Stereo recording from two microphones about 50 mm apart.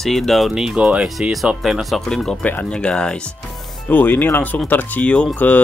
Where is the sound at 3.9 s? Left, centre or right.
Left.